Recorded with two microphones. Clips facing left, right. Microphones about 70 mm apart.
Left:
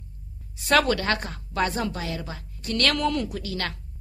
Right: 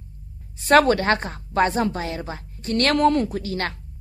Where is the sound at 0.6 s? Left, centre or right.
Right.